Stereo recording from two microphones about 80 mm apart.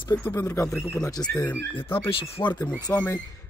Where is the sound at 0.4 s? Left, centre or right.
Left.